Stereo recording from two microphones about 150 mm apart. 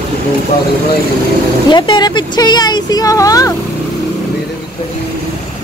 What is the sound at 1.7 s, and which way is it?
A woman's voice, 30° left (ahead or behind).